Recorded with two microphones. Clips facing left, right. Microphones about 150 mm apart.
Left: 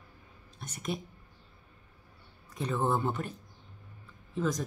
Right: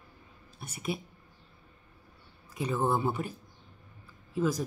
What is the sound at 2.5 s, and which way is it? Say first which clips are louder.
Speech: right 1 dB; 10° right (ahead or behind).